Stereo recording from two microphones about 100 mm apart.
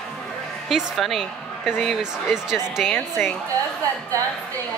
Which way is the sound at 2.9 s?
20° left (ahead or behind).